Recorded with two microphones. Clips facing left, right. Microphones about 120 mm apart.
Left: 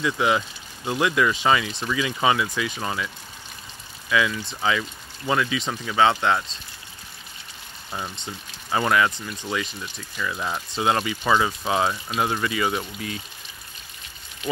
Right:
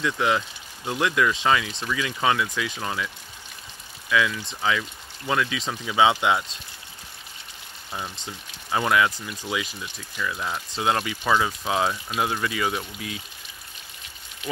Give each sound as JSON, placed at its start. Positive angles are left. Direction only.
{"t": 0.0, "sound": "speech", "side_deg": 5}
{"t": 4.1, "sound": "speech", "side_deg": 0}
{"t": 7.9, "sound": "speech", "side_deg": 0}